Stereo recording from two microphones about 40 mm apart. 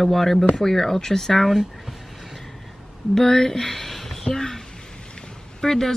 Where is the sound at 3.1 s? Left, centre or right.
Centre.